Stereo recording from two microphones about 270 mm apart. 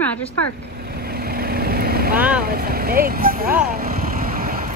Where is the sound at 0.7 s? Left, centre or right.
Right.